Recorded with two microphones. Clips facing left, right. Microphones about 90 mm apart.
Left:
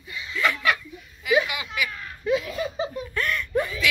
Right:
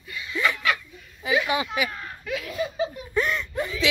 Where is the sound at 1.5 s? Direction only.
30° right (ahead or behind).